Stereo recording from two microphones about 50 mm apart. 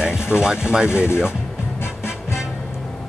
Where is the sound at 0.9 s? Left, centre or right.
Left.